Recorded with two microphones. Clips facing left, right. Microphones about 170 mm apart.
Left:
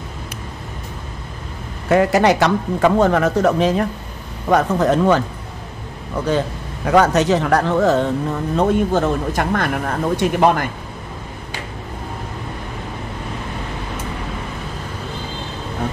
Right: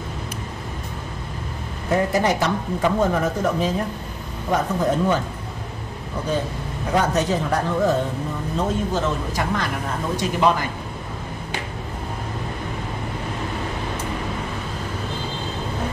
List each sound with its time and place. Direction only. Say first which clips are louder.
1.9 s speech: left 6 dB; 75° left (ahead or behind)
6.9 s speech: left 6 dB; 75° left (ahead or behind)
8.5 s speech: left 7 dB; 60° left (ahead or behind)